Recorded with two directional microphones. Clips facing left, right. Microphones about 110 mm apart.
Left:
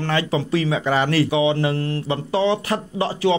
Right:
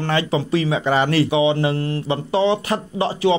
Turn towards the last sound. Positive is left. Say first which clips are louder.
# right 1 dB
turn(degrees=-20)  # may be behind; listen again after turning